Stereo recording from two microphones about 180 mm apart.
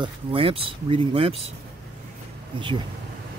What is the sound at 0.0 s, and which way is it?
Speech, 30° right (ahead or behind).